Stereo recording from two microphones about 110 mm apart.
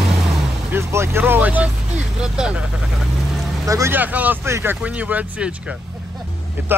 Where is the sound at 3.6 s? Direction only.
30° right (ahead or behind).